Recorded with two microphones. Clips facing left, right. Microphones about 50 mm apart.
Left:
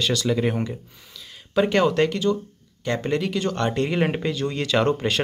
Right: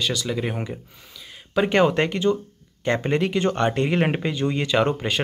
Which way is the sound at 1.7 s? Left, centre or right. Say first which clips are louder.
Right 2 dB; right.